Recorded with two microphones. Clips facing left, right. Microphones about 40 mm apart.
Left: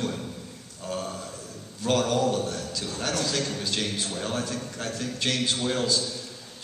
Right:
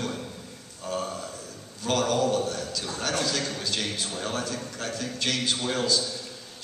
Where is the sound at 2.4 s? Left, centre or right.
Centre.